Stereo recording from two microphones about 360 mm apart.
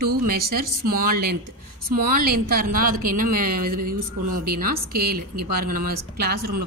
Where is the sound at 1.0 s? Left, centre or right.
Right.